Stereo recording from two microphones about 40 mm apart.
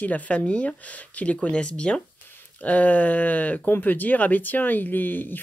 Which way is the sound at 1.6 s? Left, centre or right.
Left.